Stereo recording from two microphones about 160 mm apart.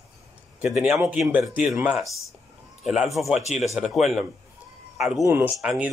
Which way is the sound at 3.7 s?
Centre (ahead or behind).